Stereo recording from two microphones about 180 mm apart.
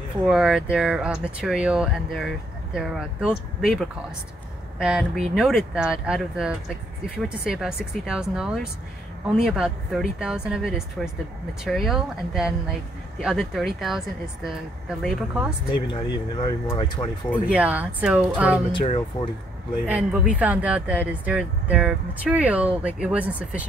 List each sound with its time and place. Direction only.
0.3 s speech: 5° right (ahead or behind)
15.7 s speech: 25° left (ahead or behind)
17.5 s speech: 10° right (ahead or behind)
18.7 s speech: 25° left (ahead or behind)
19.9 s speech: 5° right (ahead or behind)